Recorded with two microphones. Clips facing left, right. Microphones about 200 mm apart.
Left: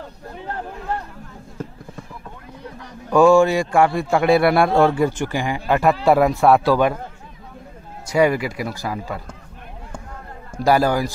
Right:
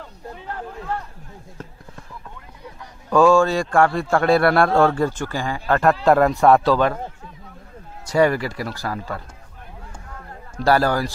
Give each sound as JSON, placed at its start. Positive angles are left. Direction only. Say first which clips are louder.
{"t": 3.1, "sound": "a man's voice", "louder": "left 2 dB", "side_deg": 15}
{"t": 8.1, "sound": "a man's voice", "louder": "even", "side_deg": 10}
{"t": 10.6, "sound": "a man's voice", "louder": "left 1 dB", "side_deg": 15}